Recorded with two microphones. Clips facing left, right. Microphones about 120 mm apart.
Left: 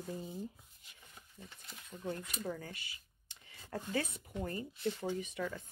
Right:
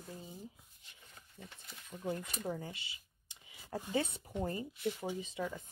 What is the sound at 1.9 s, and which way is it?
Speech, 5° right (ahead or behind).